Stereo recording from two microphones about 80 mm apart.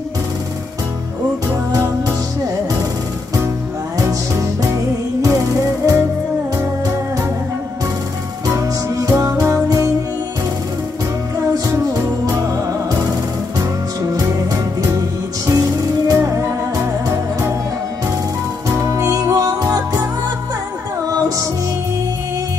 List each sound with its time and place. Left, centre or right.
4.0 s music: right
5.2 s music: right
8.5 s music: right
11.9 s music: right
16.2 s music: right
18.7 s music: right